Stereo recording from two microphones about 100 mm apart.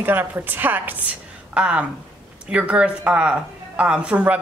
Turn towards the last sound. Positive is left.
turn(degrees=-10)  # may be behind; listen again after turning